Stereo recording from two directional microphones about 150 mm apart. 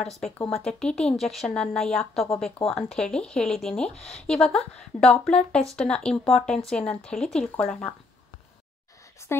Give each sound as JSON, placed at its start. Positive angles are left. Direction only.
{"t": 0.5, "sound": "a woman's voice", "side_deg": 5}
{"t": 3.9, "sound": "speech", "side_deg": 45}
{"t": 4.3, "sound": "a woman's voice", "side_deg": 5}
{"t": 9.2, "sound": "speech", "side_deg": 20}